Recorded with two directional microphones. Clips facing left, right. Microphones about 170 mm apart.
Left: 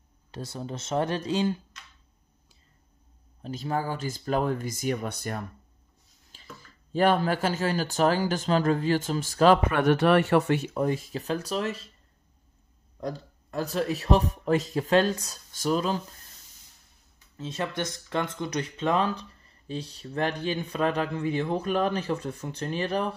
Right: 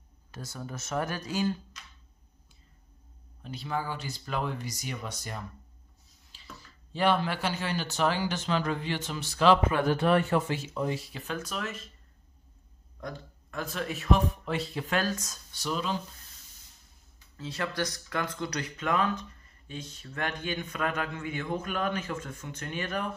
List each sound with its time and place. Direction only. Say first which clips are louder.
0.3 s speech: left 5 dB; 30° left (ahead or behind)
3.4 s speech: left 4 dB; 45° left (ahead or behind)
9.7 s speech: left 4 dB; 70° left (ahead or behind); by 11.9 s 35° left (ahead or behind)
13.0 s speech: left 6 dB; 35° left (ahead or behind)
15.0 s speech: left 7 dB; 30° left (ahead or behind)
15.5 s speech: left 6 dB; 45° left (ahead or behind)
17.4 s speech: left 2 dB; 25° left (ahead or behind)